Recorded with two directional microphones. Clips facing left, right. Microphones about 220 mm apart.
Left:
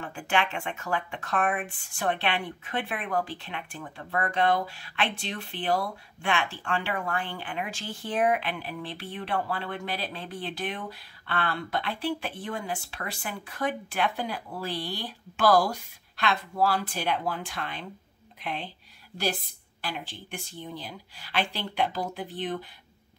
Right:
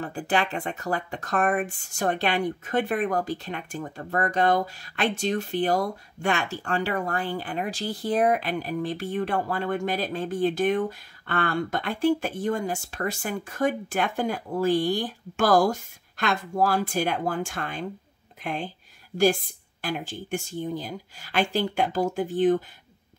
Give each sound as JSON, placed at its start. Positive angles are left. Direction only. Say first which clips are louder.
{"t": 0.0, "sound": "speech", "louder": "right 3 dB", "side_deg": -35}